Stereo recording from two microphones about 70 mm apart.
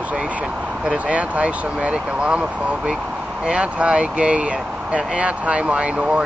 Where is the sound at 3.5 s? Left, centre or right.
Centre.